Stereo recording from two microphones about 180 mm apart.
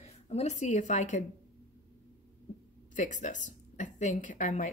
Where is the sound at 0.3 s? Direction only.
40° left (ahead or behind).